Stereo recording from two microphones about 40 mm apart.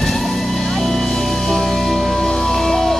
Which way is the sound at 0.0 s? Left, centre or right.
Centre.